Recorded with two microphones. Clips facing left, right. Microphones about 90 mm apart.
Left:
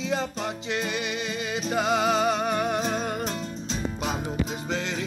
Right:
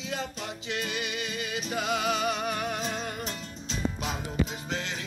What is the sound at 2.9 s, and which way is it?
Music, 40° left (ahead or behind).